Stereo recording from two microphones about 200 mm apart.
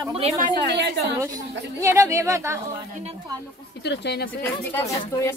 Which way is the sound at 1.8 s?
15° right (ahead or behind).